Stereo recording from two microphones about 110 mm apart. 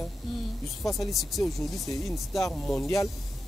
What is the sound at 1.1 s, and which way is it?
Speech, centre (ahead or behind).